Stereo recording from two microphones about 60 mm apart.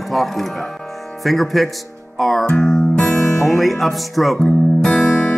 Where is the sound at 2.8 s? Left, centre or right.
Centre.